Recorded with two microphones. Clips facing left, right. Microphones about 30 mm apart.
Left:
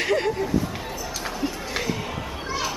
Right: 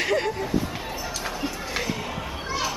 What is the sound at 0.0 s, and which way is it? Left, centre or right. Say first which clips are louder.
Speech: left 1 dB; centre.